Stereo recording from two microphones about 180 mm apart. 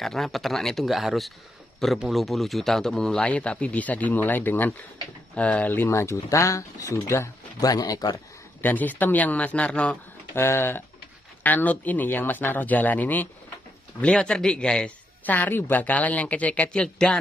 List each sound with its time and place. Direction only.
0.0 s speech: centre (ahead or behind); by 8.2 s 20° left (ahead or behind)
8.5 s speech: 10° left (ahead or behind)